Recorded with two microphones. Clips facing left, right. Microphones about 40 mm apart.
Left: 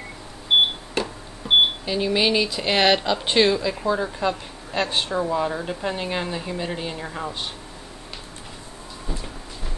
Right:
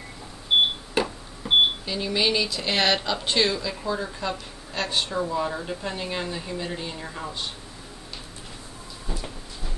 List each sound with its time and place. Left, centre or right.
1.0 s beep: centre
1.5 s cash register: centre
1.9 s speech: centre